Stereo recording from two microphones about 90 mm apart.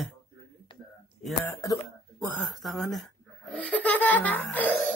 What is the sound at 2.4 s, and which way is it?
Speech, centre (ahead or behind).